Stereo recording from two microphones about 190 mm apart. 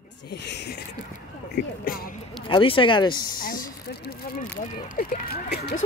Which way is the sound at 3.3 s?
50° left (ahead or behind).